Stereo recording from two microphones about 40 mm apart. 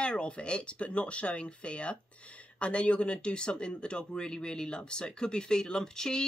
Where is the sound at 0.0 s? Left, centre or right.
Left.